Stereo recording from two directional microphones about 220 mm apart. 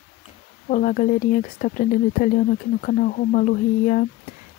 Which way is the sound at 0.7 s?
40° left (ahead or behind).